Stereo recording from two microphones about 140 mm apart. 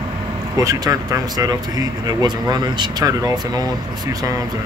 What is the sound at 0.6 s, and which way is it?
Speech, 25° right (ahead or behind).